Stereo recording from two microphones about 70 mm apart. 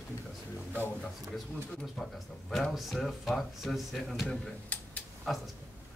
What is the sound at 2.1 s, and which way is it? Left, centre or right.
A man's voice, centre.